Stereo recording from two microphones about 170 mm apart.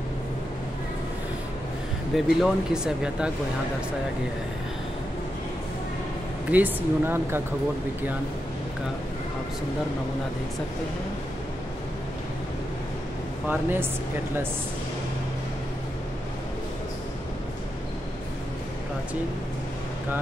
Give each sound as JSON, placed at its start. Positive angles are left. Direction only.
{"t": 2.1, "sound": "speech", "side_deg": 0}
{"t": 6.5, "sound": "speech", "side_deg": -10}
{"t": 13.5, "sound": "speech", "side_deg": -10}